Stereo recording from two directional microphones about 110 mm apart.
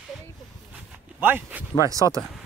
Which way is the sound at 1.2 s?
15° right (ahead or behind).